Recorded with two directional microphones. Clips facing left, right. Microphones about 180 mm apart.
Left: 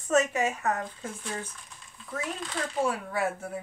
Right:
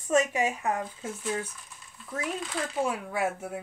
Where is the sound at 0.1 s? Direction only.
10° right (ahead or behind).